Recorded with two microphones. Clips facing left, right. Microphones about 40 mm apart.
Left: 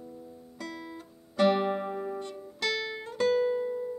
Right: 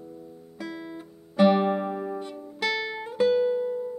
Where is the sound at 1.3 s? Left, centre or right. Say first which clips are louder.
Right 4 dB; centre.